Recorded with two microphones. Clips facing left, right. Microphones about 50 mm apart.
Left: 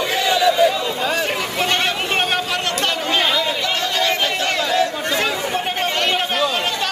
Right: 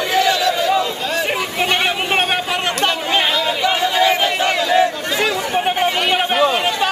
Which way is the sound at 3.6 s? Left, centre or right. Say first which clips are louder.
Right 5 dB; centre.